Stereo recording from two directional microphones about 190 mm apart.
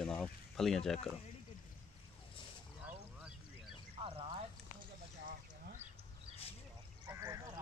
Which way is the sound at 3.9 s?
30° right (ahead or behind).